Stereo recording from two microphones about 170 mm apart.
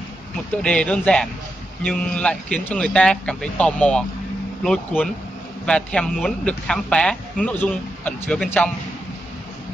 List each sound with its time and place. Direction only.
0.6 s a man's voice: 5° left (ahead or behind)